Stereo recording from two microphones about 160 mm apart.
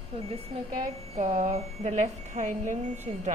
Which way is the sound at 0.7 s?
45° right (ahead or behind).